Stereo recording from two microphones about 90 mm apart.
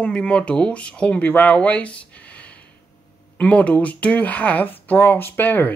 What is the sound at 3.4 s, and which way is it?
Speech, 15° left (ahead or behind).